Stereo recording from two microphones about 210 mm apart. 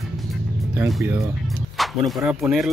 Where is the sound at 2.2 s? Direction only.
10° right (ahead or behind).